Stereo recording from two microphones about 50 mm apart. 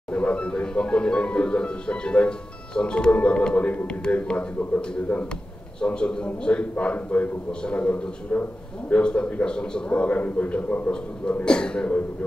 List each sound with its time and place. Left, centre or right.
0.1 s a man's voice: left
9.0 s speech: centre
11.4 s a man's voice: centre